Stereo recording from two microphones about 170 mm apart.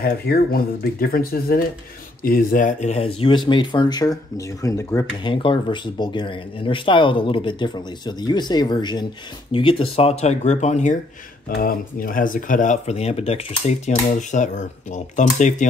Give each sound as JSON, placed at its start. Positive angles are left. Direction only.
{"t": 0.0, "sound": "speech", "side_deg": 65}
{"t": 5.3, "sound": "speech", "side_deg": 30}
{"t": 11.4, "sound": "speech", "side_deg": 60}